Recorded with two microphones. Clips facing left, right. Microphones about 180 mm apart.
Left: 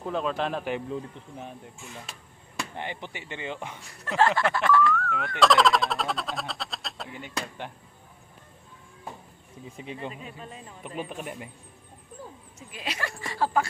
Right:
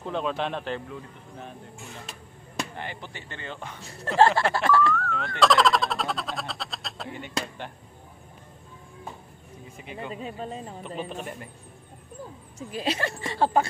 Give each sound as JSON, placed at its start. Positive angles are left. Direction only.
{"t": 0.0, "sound": "speech", "side_deg": 0}
{"t": 2.8, "sound": "speech", "side_deg": 20}
{"t": 3.8, "sound": "speech", "side_deg": -30}
{"t": 4.9, "sound": "a sound", "side_deg": 5}
{"t": 9.8, "sound": "speech", "side_deg": 30}
{"t": 10.1, "sound": "speech", "side_deg": -35}
{"t": 11.2, "sound": "speech", "side_deg": 15}
{"t": 12.5, "sound": "speech", "side_deg": -30}